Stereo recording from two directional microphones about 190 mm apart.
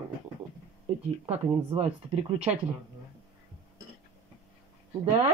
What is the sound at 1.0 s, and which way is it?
Speech, 30° right (ahead or behind).